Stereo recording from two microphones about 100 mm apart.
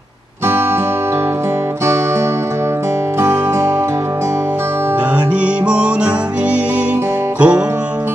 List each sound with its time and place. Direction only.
3.2 s music: 25° right (ahead or behind)
5.4 s music: 10° right (ahead or behind)
7.3 s music: 10° right (ahead or behind)